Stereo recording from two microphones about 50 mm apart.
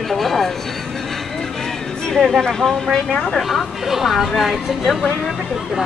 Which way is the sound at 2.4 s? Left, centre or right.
Centre.